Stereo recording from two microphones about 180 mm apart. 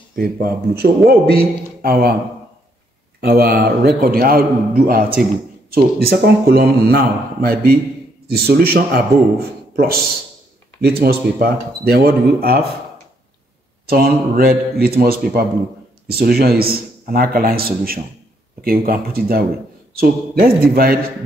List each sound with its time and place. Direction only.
0.1 s a man's voice: 55° right (ahead or behind)
3.2 s a man's voice: 60° right (ahead or behind)
10.8 s a man's voice: 60° right (ahead or behind)
13.8 s a man's voice: 55° right (ahead or behind)